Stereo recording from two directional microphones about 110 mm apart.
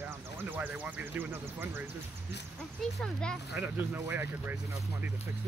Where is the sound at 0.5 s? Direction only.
15° right (ahead or behind).